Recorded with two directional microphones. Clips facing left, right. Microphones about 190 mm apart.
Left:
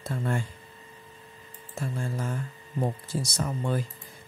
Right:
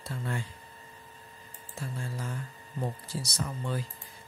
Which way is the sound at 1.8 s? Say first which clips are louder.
Left 6 dB; 50° left (ahead or behind).